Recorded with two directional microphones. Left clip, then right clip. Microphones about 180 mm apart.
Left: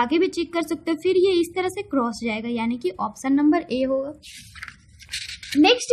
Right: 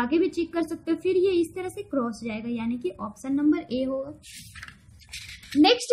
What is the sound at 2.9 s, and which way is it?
A woman's voice, 35° left (ahead or behind).